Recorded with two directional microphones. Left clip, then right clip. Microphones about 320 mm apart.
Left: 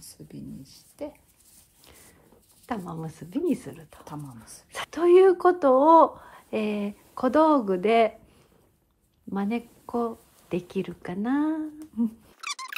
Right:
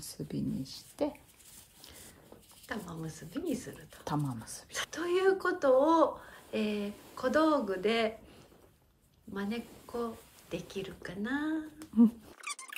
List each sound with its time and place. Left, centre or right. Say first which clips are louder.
0.0 s speech: right 5 dB; right
2.7 s speech: left 7 dB; centre
4.0 s speech: right 7 dB; right
4.6 s speech: left 13 dB; centre
9.3 s speech: left 8 dB; centre